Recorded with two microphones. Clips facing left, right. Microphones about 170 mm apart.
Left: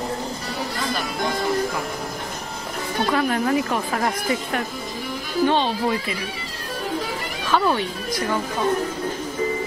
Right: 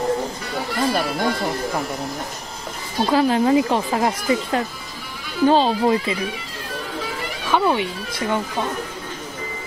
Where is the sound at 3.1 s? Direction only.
30° right (ahead or behind).